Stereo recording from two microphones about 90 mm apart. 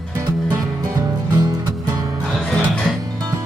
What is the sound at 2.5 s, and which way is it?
Music, centre (ahead or behind).